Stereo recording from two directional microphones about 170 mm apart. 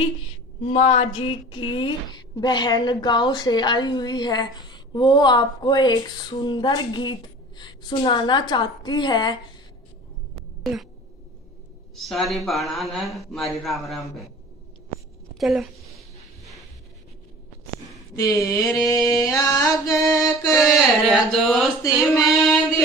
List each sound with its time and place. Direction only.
0.7 s a woman's voice: 35° left (ahead or behind)
10.3 s a sound: centre (ahead or behind)
11.9 s speech: centre (ahead or behind)
15.3 s a woman's voice: centre (ahead or behind)
18.1 s a woman's voice: 20° left (ahead or behind)
20.5 s speech: centre (ahead or behind)